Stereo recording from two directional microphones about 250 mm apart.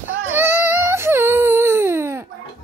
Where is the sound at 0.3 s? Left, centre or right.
Centre.